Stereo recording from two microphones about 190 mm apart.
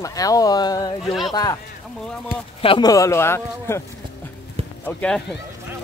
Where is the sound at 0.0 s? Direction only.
20° left (ahead or behind).